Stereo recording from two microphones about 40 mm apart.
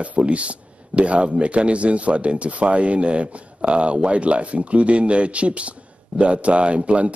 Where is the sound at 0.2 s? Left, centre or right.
Right.